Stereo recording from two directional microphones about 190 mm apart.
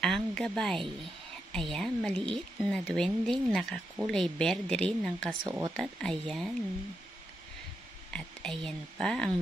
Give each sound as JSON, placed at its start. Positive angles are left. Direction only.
{"t": 0.0, "sound": "speech", "side_deg": 5}
{"t": 5.4, "sound": "speech", "side_deg": -20}
{"t": 5.8, "sound": "speech", "side_deg": 0}
{"t": 8.1, "sound": "speech", "side_deg": 5}